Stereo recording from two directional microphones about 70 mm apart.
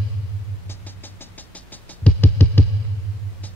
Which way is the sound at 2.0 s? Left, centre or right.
Left.